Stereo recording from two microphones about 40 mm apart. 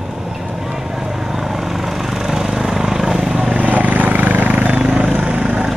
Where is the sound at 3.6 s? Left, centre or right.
Right.